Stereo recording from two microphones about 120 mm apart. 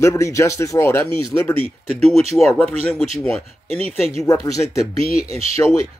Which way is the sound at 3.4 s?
60° right (ahead or behind).